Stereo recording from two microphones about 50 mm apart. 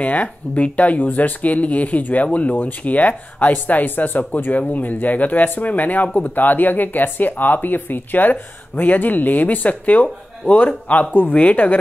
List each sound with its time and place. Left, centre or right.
0.0 s speech: left